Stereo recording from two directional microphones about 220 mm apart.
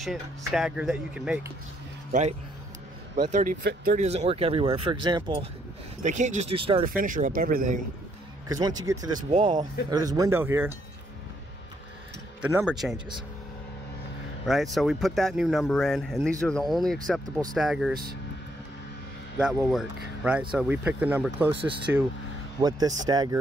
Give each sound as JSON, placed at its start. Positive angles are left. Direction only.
{"t": 0.5, "sound": "speech", "side_deg": 0}
{"t": 3.2, "sound": "speech", "side_deg": -35}
{"t": 6.0, "sound": "speech", "side_deg": -35}
{"t": 6.8, "sound": "speech", "side_deg": -40}
{"t": 8.5, "sound": "speech", "side_deg": -15}
{"t": 12.4, "sound": "speech", "side_deg": -5}
{"t": 14.4, "sound": "speech", "side_deg": 0}
{"t": 19.3, "sound": "speech", "side_deg": -5}